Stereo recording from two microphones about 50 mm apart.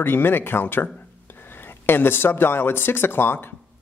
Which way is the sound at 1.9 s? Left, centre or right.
Left.